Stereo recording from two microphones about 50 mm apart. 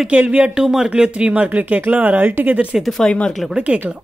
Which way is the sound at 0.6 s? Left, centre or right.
Centre.